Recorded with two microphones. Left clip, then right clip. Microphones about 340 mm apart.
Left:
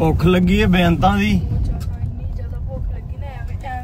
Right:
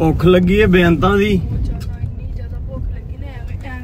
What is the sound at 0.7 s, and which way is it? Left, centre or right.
Speech, left.